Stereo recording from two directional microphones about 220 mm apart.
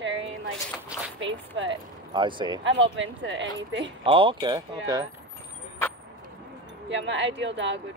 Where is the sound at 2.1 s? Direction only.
20° right (ahead or behind).